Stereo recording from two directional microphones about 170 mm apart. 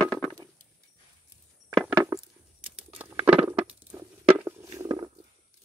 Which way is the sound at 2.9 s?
10° right (ahead or behind).